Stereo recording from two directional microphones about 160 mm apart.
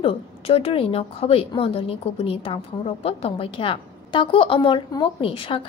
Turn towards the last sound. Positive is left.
turn(degrees=35)  # may be behind; listen again after turning